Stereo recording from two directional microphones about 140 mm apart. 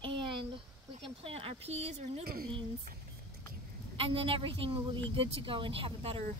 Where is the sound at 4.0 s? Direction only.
40° right (ahead or behind).